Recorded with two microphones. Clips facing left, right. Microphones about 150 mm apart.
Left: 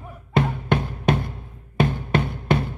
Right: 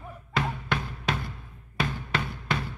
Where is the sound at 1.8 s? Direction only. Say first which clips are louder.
Left 9 dB; 50° left (ahead or behind).